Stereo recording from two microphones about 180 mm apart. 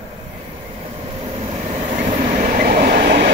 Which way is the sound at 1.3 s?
40° right (ahead or behind).